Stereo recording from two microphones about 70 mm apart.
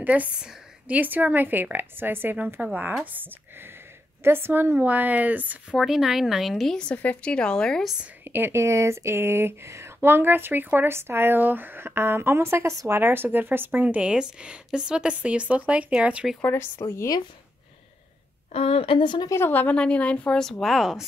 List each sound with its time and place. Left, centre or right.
0.0 s a woman's voice: right
5.7 s speech: centre
6.8 s speech: centre
8.2 s speech: right
13.8 s speech: centre
16.3 s speech: left
19.0 s a woman's voice: left
19.7 s speech: centre
20.6 s speech: centre